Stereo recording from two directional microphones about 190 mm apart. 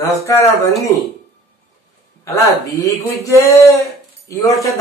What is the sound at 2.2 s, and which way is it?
Speech, 15° left (ahead or behind).